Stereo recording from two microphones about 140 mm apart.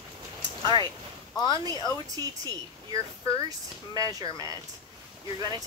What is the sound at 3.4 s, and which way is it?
Speech, 25° right (ahead or behind).